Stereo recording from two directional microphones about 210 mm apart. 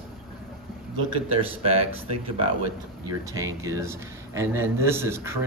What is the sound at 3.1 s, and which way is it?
Speech, 15° right (ahead or behind).